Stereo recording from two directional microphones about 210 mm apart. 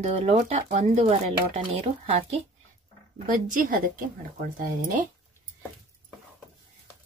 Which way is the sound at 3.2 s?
40° right (ahead or behind).